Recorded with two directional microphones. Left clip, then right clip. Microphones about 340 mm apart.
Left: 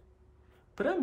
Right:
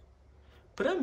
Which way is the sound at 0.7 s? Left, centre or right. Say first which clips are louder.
Right 1 dB; centre.